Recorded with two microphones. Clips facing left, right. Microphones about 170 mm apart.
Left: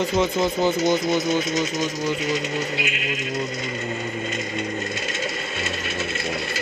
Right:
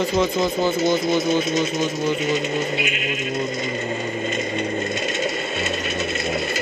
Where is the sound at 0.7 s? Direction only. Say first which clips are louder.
Right 1 dB; 25° right (ahead or behind).